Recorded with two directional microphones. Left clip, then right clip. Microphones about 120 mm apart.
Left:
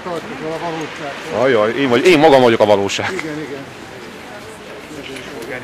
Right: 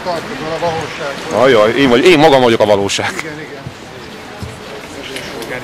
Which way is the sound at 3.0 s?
10° right (ahead or behind).